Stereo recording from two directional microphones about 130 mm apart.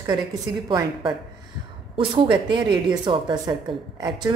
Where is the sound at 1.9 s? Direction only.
45° right (ahead or behind).